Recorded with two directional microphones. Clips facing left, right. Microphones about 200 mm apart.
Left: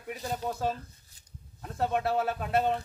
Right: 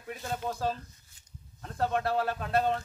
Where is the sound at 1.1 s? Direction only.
35° left (ahead or behind).